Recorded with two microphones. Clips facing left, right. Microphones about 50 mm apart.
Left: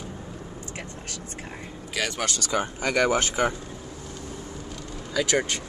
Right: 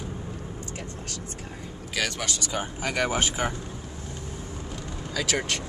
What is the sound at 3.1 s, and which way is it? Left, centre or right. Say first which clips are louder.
Speech: left 3 dB; centre.